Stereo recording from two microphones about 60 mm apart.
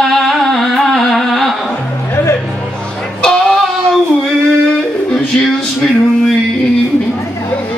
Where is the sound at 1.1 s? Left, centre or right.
Centre.